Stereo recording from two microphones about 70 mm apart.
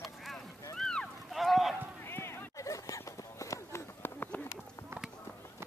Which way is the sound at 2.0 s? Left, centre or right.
Left.